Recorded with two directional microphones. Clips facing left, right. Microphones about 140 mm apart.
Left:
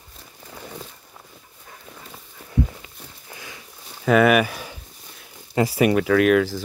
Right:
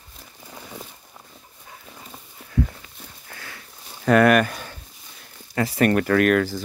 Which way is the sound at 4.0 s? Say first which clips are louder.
Even; centre (ahead or behind).